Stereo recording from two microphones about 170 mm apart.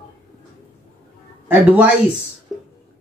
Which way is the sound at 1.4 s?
10° right (ahead or behind).